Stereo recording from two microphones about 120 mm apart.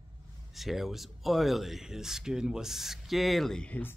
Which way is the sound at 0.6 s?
Centre (ahead or behind).